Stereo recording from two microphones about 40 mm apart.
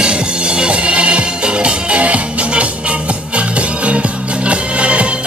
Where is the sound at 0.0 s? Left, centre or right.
Right.